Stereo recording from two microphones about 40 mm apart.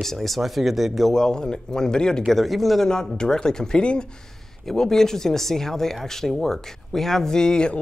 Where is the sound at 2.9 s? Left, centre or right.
Centre.